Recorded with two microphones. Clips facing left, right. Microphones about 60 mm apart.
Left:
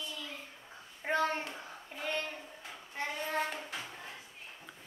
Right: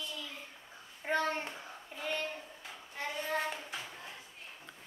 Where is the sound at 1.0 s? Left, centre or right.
Left.